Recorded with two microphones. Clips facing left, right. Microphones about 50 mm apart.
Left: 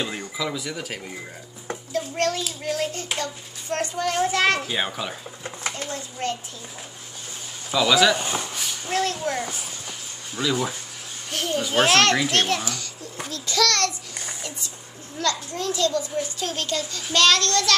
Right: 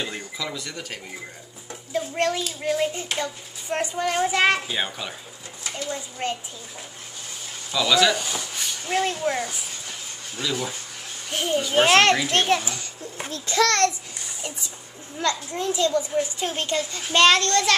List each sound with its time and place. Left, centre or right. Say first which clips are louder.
0.0 s dishes: left 3 dB; centre
1.9 s a sound: right 1 dB; centre
2.6 s a child's voice: right 4 dB; centre
4.6 s a child's voice: left 2 dB; centre
5.9 s a child's voice: right 3 dB; centre
7.7 s speech: left 2 dB; centre
8.2 s speech: left 3 dB; left
8.5 s a sound: even; centre
8.9 s a child's voice: right 1 dB; right
11.3 s a child's voice: right 2 dB; right
11.7 s a child's voice: right 2 dB; centre
12.3 s a child's voice: right 1 dB; right
15.1 s a child's voice: even; right